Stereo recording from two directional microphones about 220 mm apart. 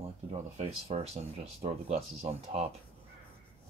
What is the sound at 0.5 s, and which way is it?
Speech, 30° right (ahead or behind).